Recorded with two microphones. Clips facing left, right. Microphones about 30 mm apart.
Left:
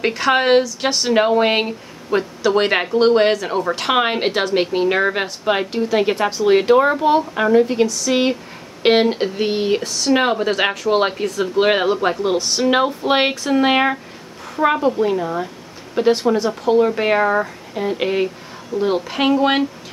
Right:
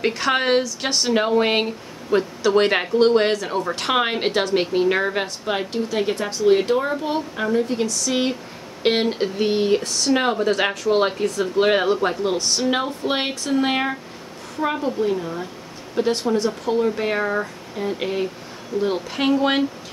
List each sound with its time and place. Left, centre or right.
0.0 s speech: centre
10.1 s speech: centre
11.2 s speech: centre
11.5 s speech: centre